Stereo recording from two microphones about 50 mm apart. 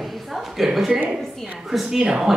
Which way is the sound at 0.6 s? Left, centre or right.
Centre.